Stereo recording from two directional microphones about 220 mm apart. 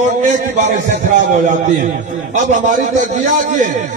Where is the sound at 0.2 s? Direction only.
35° right (ahead or behind).